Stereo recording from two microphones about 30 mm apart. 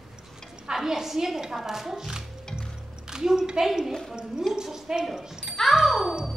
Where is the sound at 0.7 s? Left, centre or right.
Centre.